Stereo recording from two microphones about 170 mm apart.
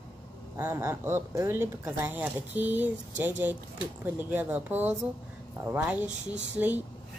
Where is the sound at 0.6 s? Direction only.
15° right (ahead or behind).